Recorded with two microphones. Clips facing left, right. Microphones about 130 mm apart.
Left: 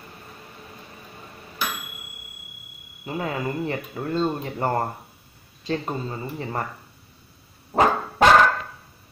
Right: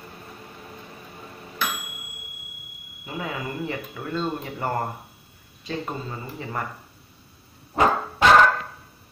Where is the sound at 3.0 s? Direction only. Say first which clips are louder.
Left 4 dB; 35° left (ahead or behind).